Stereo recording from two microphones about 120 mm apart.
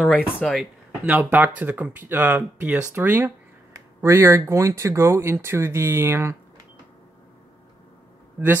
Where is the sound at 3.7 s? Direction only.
20° right (ahead or behind).